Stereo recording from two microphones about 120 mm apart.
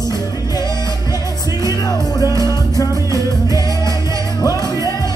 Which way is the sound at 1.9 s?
30° left (ahead or behind).